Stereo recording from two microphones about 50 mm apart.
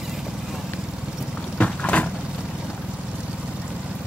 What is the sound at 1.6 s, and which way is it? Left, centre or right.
Cupboard open or close, left.